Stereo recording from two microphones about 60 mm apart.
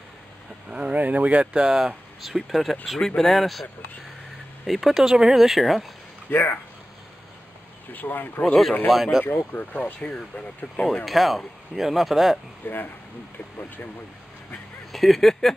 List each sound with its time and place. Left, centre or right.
0.7 s speech: centre
0.9 s speech: right
2.2 s speech: centre
4.6 s speech: centre
6.3 s speech: left
7.9 s speech: left
8.8 s speech: centre
9.5 s speech: left
10.0 s speech: centre
10.6 s speech: left
11.1 s speech: centre
12.6 s speech: left
14.9 s speech: centre